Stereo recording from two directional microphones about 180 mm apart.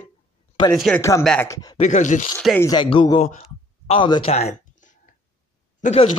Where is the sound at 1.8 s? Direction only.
45° left (ahead or behind).